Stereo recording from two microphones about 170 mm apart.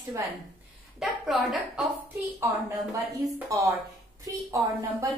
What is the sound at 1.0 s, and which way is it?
A woman's voice, centre (ahead or behind).